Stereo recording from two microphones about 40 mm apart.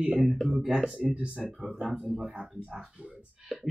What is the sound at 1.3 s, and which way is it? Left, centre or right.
Speech, centre.